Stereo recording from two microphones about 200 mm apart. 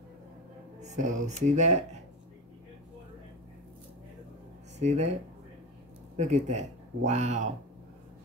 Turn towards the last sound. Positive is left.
turn(degrees=-35)  # may be behind; listen again after turning